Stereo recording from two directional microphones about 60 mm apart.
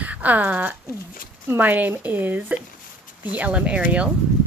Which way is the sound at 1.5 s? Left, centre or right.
Right.